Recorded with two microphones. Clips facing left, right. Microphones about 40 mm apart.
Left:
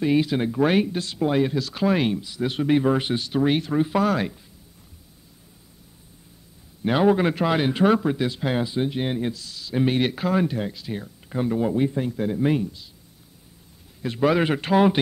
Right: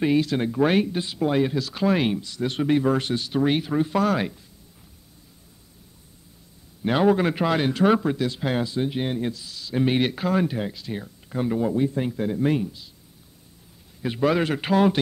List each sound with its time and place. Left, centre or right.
0.1 s speech: centre
3.2 s speech: centre
6.8 s speech: centre
11.3 s speech: centre
12.1 s speech: centre
14.0 s a man's voice: centre
14.7 s speech: centre